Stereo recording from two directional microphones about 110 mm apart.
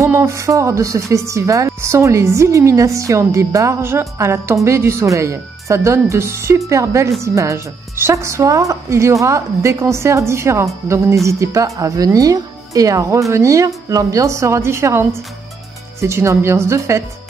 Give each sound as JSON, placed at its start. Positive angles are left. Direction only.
{"t": 0.0, "sound": "a woman's voice", "side_deg": -25}